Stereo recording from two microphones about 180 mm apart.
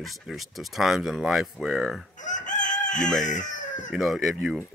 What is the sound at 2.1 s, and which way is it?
Chicken, 45° left (ahead or behind).